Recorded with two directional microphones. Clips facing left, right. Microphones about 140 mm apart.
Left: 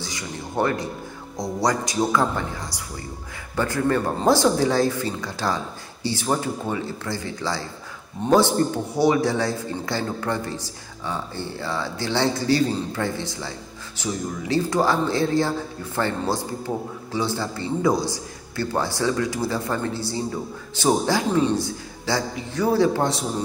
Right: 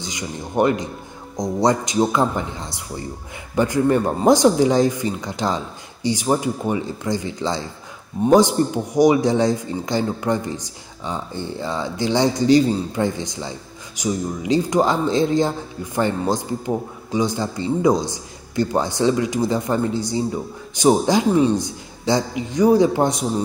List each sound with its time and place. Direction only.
0.0 s a man's voice: 20° right (ahead or behind)